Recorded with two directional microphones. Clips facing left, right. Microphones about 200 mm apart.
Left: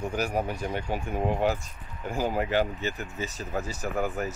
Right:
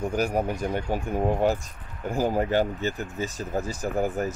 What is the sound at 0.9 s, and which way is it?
Speech, 45° right (ahead or behind).